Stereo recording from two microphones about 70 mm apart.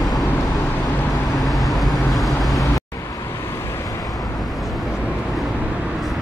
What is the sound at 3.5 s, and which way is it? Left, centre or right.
Vehicle, left.